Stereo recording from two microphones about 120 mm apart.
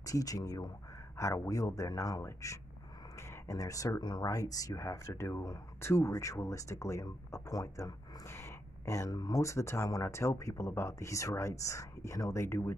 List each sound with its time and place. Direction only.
0.0 s speech: 30° left (ahead or behind)